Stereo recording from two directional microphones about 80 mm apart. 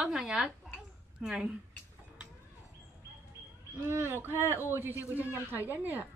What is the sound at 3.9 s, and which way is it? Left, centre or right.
Speech, right.